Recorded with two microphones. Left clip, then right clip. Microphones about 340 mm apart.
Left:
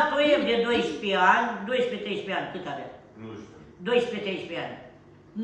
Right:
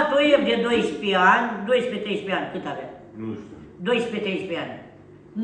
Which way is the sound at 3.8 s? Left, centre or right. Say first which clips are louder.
Right 2 dB; centre.